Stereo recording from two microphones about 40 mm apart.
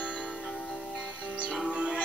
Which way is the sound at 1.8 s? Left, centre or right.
Right.